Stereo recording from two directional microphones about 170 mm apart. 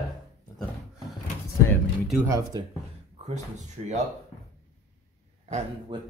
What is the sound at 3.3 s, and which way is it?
Speech, 40° right (ahead or behind).